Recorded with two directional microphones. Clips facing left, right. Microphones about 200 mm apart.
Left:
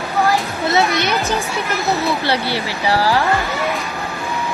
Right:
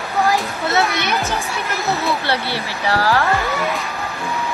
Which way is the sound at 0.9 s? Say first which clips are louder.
Left 3 dB; 15° left (ahead or behind).